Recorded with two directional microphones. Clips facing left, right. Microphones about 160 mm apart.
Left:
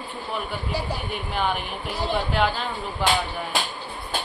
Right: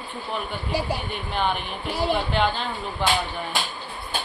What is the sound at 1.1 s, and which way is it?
Speech, 5° left (ahead or behind).